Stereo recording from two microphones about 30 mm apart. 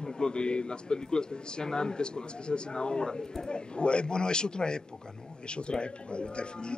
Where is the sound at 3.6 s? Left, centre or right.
Left.